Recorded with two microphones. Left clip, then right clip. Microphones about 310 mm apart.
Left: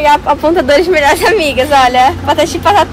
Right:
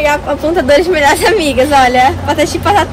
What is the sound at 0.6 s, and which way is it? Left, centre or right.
A woman's voice, left.